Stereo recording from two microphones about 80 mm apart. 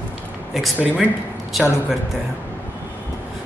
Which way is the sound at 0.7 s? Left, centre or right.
Centre.